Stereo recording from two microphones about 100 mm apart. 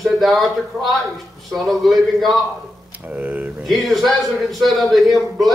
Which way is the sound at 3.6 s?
Centre (ahead or behind).